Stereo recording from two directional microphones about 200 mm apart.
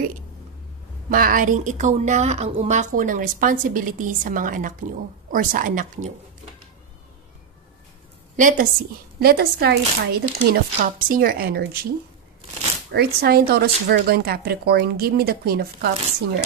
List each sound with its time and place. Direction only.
1.1 s a woman's voice: 45° right (ahead or behind)
8.4 s a woman's voice: 40° right (ahead or behind)
9.2 s speech: 50° right (ahead or behind)
10.4 s speech: 40° right (ahead or behind)
12.9 s speech: 50° right (ahead or behind)